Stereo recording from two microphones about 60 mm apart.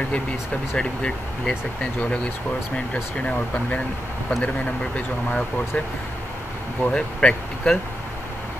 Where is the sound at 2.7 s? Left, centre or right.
Centre.